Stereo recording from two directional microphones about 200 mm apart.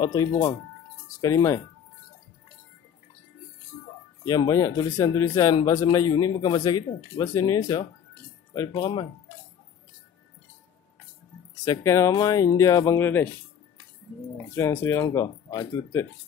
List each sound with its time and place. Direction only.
0.0 s speech: 20° left (ahead or behind)
4.2 s speech: 15° left (ahead or behind)
11.6 s speech: 15° left (ahead or behind)
14.5 s speech: 10° left (ahead or behind)